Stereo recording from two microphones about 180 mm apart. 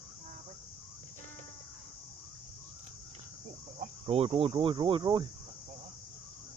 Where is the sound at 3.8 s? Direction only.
35° right (ahead or behind).